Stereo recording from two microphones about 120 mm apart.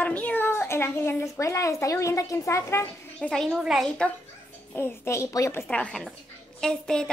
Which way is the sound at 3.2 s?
5° left (ahead or behind).